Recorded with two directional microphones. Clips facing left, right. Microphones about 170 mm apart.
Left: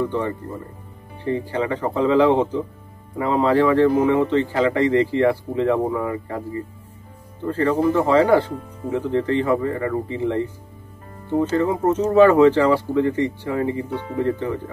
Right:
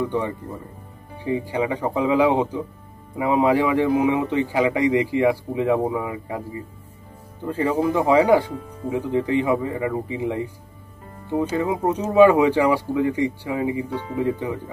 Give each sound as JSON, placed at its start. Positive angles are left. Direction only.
{"t": 1.1, "sound": "speech", "side_deg": -10}
{"t": 7.4, "sound": "speech", "side_deg": -10}